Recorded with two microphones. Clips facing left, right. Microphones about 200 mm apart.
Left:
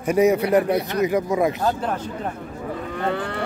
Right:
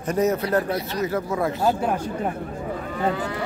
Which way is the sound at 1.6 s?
10° right (ahead or behind).